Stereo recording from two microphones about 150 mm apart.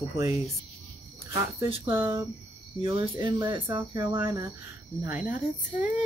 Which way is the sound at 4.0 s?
15° right (ahead or behind).